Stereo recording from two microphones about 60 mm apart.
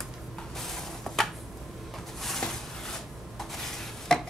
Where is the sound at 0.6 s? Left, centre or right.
Centre.